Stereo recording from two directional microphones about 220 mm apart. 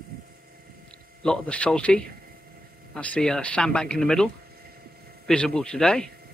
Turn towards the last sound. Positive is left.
turn(degrees=5)  # may be behind; listen again after turning